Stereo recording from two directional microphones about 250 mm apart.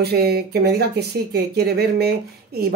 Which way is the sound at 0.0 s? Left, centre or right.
Right.